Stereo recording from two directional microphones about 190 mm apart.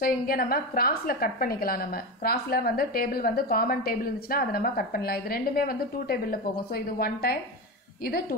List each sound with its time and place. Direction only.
0.0 s a woman's voice: 50° left (ahead or behind)